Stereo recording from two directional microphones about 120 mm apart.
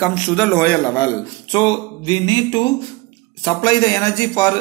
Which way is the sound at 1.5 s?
35° left (ahead or behind).